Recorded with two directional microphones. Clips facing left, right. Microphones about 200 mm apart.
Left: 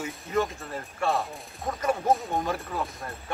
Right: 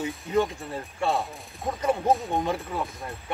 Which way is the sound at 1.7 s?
15° right (ahead or behind).